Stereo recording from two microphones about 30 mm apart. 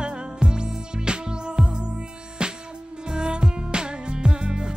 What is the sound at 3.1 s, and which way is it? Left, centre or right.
Music, right.